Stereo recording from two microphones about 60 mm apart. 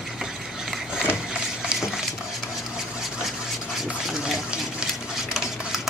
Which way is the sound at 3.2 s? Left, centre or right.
Centre.